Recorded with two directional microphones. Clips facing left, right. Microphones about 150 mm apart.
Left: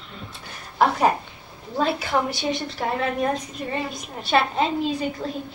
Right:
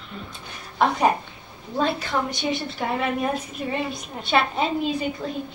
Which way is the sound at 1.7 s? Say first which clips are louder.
Left 1 dB; 5° left (ahead or behind).